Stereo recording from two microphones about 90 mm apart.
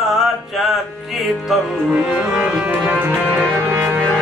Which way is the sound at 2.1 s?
20° right (ahead or behind).